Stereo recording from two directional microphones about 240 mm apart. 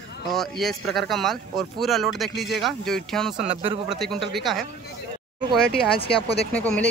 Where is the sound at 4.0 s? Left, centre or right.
Centre.